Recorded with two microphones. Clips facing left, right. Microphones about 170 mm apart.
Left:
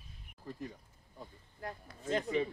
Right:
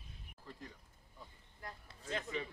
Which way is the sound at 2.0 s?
40° left (ahead or behind).